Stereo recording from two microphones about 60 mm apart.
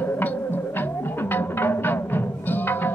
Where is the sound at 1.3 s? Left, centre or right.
Left.